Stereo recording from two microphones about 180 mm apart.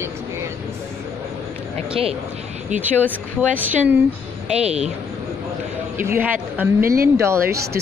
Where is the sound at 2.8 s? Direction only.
10° right (ahead or behind).